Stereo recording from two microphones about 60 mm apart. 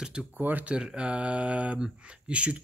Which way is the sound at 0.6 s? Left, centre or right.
Centre.